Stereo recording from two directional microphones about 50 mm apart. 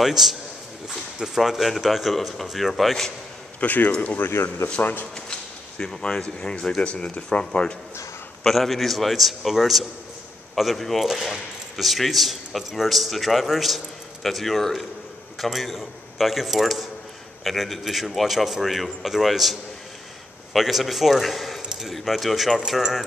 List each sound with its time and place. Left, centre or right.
0.0 s a man's voice: centre
3.6 s speech: left
4.3 s speech: left
5.1 s speech: centre
8.5 s speech: centre